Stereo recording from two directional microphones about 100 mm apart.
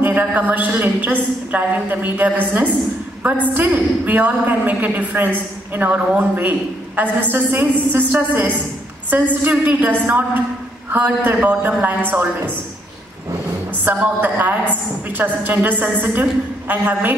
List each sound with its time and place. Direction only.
0.0 s a woman's voice: 15° right (ahead or behind)
13.8 s a woman's voice: 15° right (ahead or behind)